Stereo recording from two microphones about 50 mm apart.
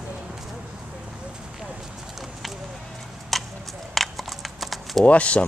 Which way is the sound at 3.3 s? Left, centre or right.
Centre.